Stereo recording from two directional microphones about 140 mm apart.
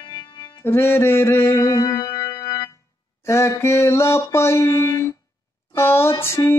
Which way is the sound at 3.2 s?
20° left (ahead or behind).